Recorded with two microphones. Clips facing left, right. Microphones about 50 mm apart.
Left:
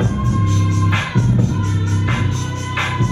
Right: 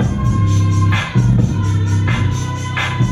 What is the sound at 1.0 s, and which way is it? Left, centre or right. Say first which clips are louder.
Music: right 1 dB; right.